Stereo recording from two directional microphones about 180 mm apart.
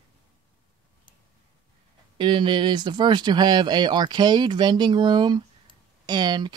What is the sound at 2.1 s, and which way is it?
Speech, 25° right (ahead or behind).